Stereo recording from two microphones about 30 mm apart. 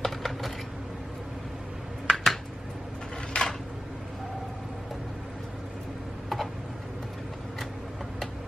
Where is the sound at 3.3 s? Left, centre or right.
Left.